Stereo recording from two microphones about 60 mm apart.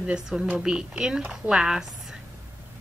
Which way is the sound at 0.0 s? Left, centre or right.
Centre.